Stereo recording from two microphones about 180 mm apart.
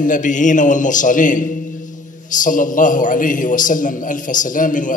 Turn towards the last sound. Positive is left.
turn(degrees=45)  # may be behind; listen again after turning